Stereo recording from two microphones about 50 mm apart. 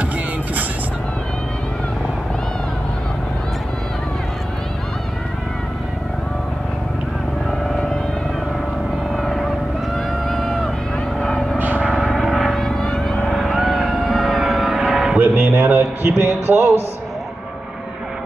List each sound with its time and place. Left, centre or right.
7.5 s vehicle: centre
9.1 s vehicle: centre
11.5 s vehicle: right
12.0 s vehicle: centre
13.3 s vehicle: centre
15.1 s music: right